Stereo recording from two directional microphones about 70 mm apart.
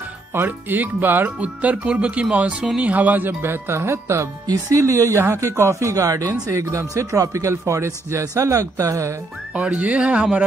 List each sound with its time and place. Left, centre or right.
0.3 s speech: right; by 2.9 s centre
2.9 s speech: right
4.5 s speech: right
9.5 s music: centre
9.8 s speech: centre